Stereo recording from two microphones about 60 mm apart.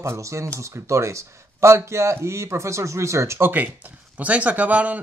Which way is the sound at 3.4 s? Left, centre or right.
Right.